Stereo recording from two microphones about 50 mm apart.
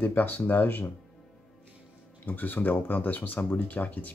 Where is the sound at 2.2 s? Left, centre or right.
Left.